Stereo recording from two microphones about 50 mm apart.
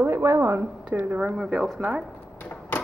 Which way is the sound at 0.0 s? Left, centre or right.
Right.